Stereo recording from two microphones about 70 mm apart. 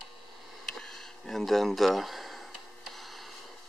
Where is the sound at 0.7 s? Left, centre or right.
Centre.